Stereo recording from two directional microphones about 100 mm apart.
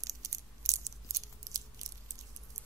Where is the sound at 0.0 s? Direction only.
35° right (ahead or behind).